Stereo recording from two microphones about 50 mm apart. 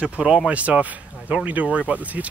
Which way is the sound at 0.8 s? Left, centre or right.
Right.